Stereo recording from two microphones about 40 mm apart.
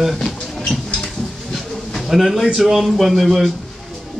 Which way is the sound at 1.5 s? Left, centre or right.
Centre.